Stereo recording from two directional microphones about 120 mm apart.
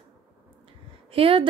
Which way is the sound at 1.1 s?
50° right (ahead or behind).